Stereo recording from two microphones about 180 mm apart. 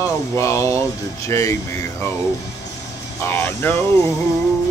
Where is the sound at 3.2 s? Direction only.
15° left (ahead or behind).